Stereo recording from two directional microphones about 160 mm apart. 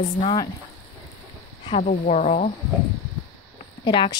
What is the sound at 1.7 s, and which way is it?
Speech, 45° left (ahead or behind).